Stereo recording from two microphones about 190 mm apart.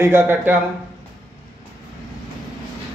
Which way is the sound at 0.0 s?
10° right (ahead or behind).